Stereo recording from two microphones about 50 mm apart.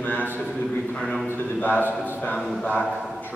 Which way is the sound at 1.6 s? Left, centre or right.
Left.